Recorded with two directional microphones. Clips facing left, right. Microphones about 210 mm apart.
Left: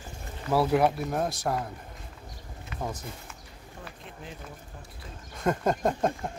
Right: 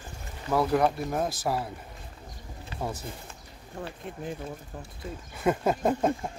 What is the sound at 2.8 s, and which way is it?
Speech, 10° right (ahead or behind).